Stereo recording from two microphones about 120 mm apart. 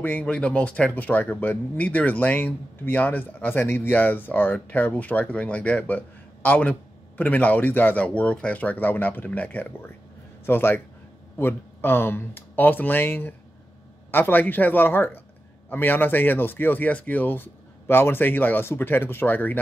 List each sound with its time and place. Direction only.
0.0 s a man's voice: 15° left (ahead or behind)